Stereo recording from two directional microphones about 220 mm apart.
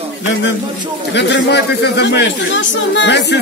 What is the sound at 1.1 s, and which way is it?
Speech, 50° left (ahead or behind).